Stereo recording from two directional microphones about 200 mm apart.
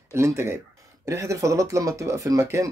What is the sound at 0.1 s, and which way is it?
Speech, 15° right (ahead or behind).